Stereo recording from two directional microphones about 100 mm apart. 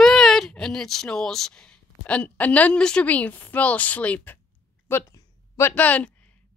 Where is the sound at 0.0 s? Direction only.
5° left (ahead or behind).